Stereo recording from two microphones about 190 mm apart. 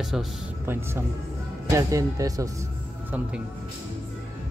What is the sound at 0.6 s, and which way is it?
Speech, 10° right (ahead or behind).